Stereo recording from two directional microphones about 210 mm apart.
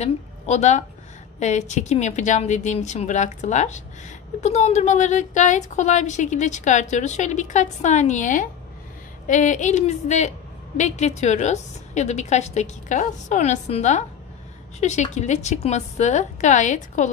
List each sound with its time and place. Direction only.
0.0 s a woman's voice: 30° left (ahead or behind)